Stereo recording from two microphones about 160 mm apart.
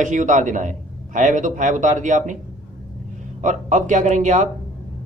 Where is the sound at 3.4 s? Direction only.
50° right (ahead or behind).